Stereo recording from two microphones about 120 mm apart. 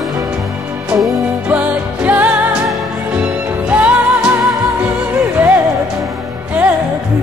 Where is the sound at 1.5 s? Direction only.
10° right (ahead or behind).